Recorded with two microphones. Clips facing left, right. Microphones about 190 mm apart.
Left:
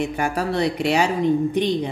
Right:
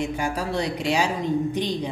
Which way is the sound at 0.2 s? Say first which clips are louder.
Left 4 dB; 60° left (ahead or behind).